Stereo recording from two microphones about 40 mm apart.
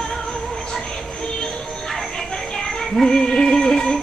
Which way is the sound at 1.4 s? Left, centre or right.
Centre.